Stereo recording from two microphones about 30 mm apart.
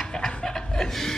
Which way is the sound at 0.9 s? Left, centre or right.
Centre.